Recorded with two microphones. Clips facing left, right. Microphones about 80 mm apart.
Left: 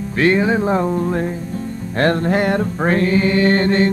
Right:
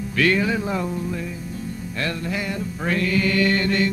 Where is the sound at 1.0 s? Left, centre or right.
Left.